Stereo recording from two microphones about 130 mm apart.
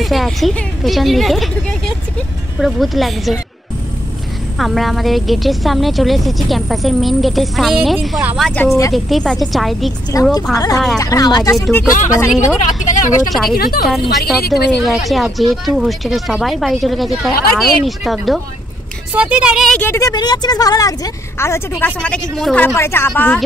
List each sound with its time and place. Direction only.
0.0 s a woman's voice: centre (ahead or behind)
4.6 s a woman's voice: centre (ahead or behind)
10.1 s a woman's voice: 25° left (ahead or behind)
12.3 s a woman's voice: 5° right (ahead or behind)
12.8 s speech: 75° left (ahead or behind)
13.3 s a woman's voice: centre (ahead or behind)
19.7 s speech: 15° left (ahead or behind)
20.0 s a woman's voice: 30° left (ahead or behind); by 22.6 s 5° left (ahead or behind)
22.6 s speech: 20° left (ahead or behind)